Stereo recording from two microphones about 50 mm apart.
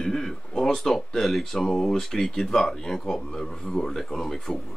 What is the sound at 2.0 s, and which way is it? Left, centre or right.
Speech, centre.